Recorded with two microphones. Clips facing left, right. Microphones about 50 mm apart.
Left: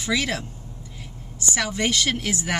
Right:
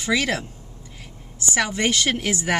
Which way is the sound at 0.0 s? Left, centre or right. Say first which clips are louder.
Right 2 dB; centre.